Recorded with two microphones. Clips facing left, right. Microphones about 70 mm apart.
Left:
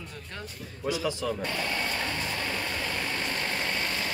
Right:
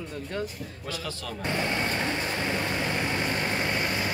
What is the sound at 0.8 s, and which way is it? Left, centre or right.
Speech, centre.